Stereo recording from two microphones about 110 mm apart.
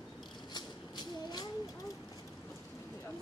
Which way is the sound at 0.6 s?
40° left (ahead or behind).